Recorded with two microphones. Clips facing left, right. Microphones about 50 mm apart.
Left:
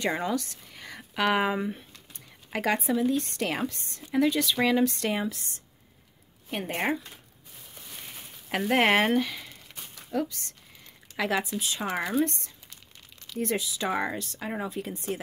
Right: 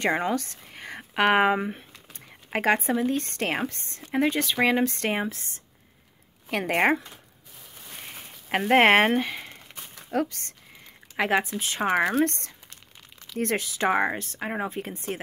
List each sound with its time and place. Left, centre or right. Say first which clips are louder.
0.0 s speech: right 3 dB; right
6.5 s speech: right 6 dB; right
8.1 s speech: right 4 dB; right
12.1 s speech: right 3 dB; right